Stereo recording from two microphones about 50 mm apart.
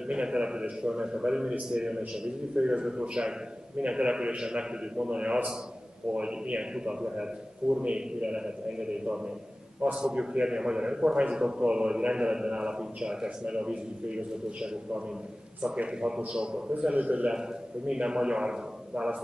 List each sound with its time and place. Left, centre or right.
0.0 s a man's voice: centre
16.9 s a man's voice: right
17.3 s a man's voice: centre